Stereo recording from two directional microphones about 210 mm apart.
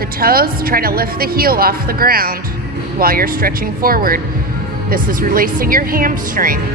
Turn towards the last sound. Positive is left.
turn(degrees=-40)  # may be behind; listen again after turning